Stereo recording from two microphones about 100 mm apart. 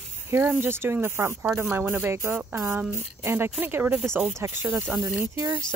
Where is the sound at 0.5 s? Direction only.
25° right (ahead or behind).